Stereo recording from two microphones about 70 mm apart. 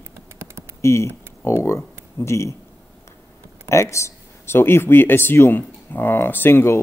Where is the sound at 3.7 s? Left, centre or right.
Left.